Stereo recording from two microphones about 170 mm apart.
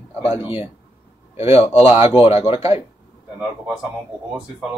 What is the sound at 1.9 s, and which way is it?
Speech, 35° left (ahead or behind).